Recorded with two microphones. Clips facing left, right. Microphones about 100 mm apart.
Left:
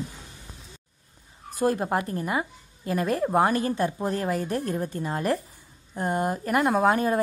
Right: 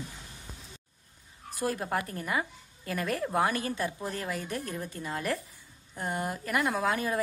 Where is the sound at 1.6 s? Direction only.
35° left (ahead or behind).